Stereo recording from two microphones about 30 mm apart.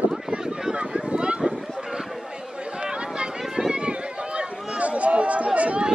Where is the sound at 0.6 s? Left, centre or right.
Right.